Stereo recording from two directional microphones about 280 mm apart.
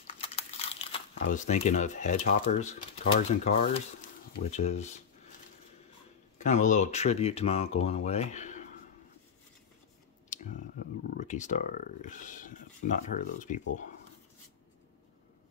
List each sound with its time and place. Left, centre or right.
0.2 s crumpling: left
1.2 s speech: left
6.3 s speech: left
10.3 s speech: left